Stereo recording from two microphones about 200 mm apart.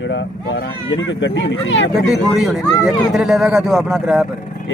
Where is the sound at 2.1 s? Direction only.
Centre (ahead or behind).